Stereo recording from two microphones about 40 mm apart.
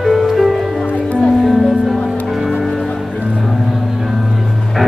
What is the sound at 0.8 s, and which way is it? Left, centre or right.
Music, left.